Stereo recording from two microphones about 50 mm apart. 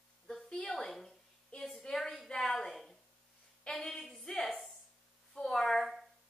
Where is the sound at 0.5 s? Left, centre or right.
Centre.